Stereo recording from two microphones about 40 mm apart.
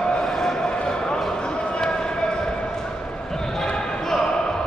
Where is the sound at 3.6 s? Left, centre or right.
Centre.